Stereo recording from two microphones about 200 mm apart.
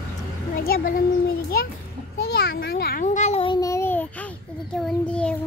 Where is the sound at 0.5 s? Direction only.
45° left (ahead or behind).